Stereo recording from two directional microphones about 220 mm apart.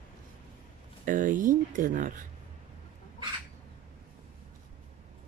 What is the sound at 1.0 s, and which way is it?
Speech, 35° right (ahead or behind).